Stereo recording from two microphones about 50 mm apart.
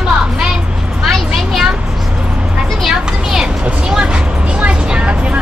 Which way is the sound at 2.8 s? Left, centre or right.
Centre.